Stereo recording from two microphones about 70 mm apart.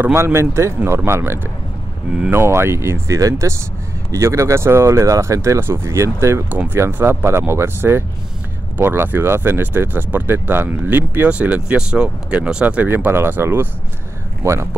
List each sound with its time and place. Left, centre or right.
0.0 s speech: right
6.5 s speech: right